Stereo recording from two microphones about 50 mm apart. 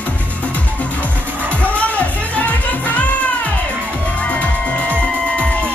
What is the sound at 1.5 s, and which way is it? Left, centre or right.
Music, left.